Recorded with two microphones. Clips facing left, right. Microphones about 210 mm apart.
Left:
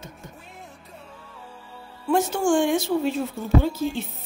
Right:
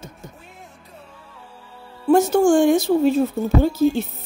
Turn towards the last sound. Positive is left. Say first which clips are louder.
# right 5 dB
turn(degrees=-40)  # may be behind; listen again after turning